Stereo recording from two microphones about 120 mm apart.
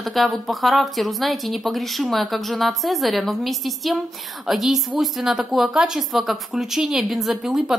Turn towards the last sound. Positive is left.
turn(degrees=-5)  # may be behind; listen again after turning